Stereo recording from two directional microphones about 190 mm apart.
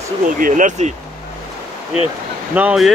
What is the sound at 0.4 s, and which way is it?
Speech, 45° right (ahead or behind).